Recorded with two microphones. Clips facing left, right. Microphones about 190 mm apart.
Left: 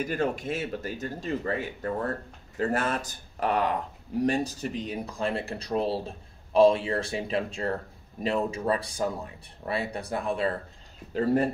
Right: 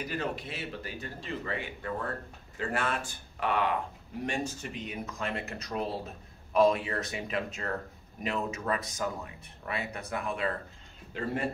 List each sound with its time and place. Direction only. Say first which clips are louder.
0.0 s speech: left 6 dB; 50° left (ahead or behind)